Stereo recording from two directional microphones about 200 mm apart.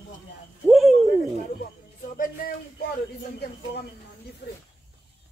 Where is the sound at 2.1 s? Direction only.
45° left (ahead or behind).